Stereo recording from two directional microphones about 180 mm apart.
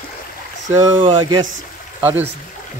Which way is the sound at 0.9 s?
30° right (ahead or behind).